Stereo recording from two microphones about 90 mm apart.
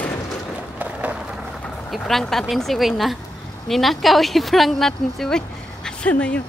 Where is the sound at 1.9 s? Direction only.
5° left (ahead or behind).